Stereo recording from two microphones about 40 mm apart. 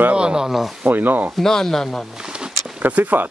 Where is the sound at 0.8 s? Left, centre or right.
Right.